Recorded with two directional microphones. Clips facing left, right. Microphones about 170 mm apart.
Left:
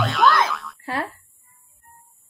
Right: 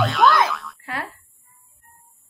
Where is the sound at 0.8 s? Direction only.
30° left (ahead or behind).